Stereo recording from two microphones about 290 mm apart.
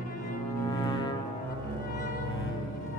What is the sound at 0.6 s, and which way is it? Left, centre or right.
Music, centre.